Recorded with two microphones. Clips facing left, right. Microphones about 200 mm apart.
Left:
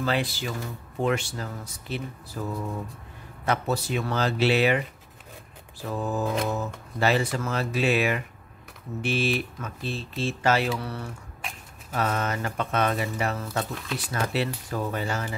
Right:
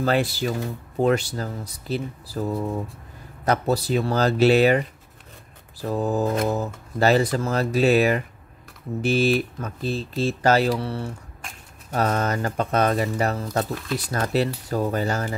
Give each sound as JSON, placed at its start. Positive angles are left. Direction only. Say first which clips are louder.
{"t": 0.0, "sound": "speech", "louder": "right 5 dB", "side_deg": -45}
{"t": 11.9, "sound": "speech", "louder": "right 4 dB", "side_deg": -40}